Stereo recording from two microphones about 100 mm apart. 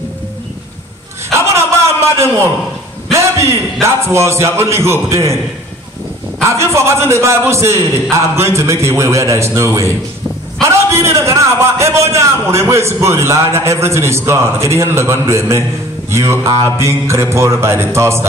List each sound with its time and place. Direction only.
1.5 s a sound: 25° right (ahead or behind)
3.8 s a man's voice: 30° right (ahead or behind)
6.5 s a man's voice: 30° right (ahead or behind)